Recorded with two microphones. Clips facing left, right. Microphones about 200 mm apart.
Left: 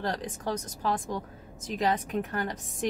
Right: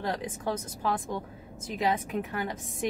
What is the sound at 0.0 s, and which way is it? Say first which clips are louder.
Speech: even; 5° right (ahead or behind).